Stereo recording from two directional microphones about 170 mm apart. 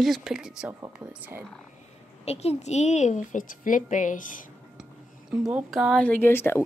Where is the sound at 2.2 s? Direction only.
40° left (ahead or behind).